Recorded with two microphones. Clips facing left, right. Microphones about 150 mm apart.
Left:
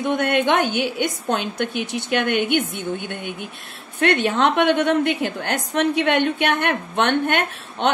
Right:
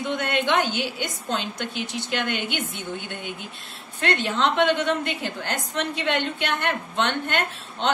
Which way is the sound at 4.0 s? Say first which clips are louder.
Left 5 dB; 60° left (ahead or behind).